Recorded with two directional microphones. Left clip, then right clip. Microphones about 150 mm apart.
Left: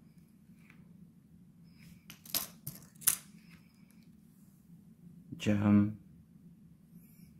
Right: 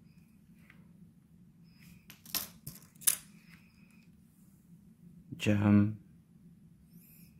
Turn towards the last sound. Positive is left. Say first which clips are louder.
# right 1 dB
turn(degrees=-20)  # may be behind; listen again after turning